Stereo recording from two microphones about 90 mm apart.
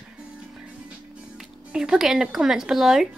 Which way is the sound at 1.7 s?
5° right (ahead or behind).